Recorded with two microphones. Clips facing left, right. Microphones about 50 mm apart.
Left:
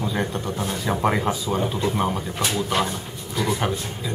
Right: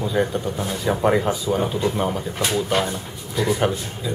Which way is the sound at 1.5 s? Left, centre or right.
Centre.